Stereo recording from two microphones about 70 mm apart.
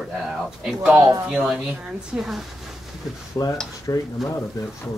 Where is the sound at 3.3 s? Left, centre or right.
Left.